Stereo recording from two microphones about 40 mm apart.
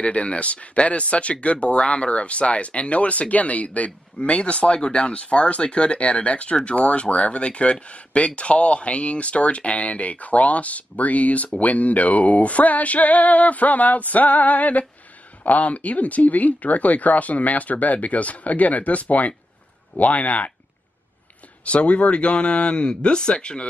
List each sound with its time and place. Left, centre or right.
0.0 s speech: left
4.2 s speech: left
21.6 s speech: left